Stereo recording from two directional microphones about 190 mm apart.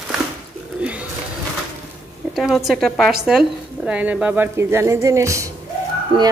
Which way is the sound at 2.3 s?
Centre (ahead or behind).